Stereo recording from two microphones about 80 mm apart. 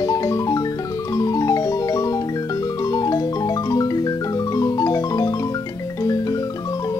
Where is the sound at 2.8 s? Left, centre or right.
Left.